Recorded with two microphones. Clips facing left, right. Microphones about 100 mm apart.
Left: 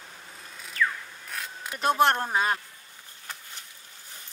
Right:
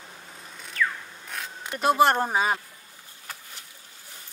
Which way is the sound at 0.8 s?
30° left (ahead or behind).